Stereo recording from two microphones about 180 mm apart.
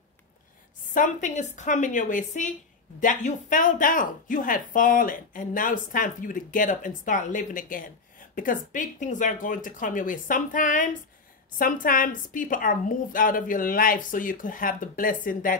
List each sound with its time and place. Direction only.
0.9 s speech: 45° left (ahead or behind)